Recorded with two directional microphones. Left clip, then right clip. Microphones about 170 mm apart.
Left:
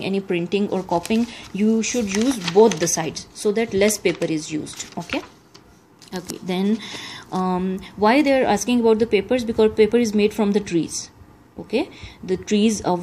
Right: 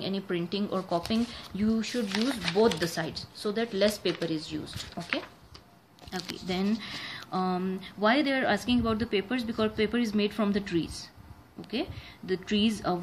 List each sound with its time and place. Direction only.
0.3 s speech: 20° left (ahead or behind)
2.8 s speech: 20° left (ahead or behind)
5.0 s speech: 5° left (ahead or behind)
6.4 s speech: 20° left (ahead or behind)